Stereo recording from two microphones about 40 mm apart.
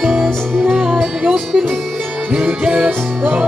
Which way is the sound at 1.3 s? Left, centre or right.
Centre.